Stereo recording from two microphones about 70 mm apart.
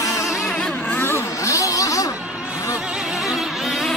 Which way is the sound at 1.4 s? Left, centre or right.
Left.